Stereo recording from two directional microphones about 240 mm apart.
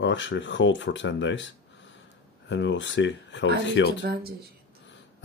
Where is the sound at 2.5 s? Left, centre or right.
Left.